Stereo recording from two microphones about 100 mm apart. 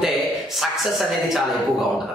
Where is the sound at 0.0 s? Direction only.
Centre (ahead or behind).